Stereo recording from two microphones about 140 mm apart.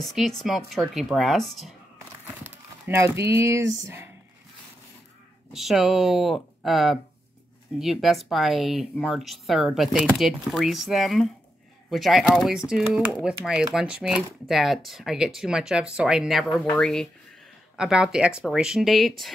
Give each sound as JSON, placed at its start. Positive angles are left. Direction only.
{"t": 0.0, "sound": "speech", "side_deg": 0}
{"t": 2.2, "sound": "speech", "side_deg": -15}
{"t": 5.5, "sound": "speech", "side_deg": 0}